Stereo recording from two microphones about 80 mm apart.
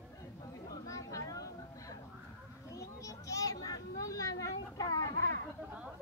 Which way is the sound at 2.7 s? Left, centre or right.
Left.